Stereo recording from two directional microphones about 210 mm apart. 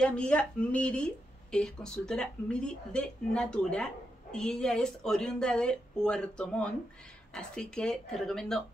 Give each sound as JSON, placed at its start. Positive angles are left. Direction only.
{"t": 0.0, "sound": "speech", "side_deg": 5}